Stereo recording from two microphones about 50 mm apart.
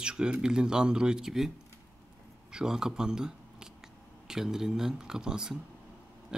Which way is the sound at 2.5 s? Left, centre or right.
Centre.